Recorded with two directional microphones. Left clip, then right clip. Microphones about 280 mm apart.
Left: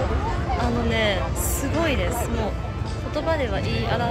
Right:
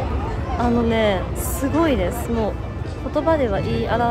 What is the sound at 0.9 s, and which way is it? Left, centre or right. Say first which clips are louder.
Speech: right 2 dB; centre.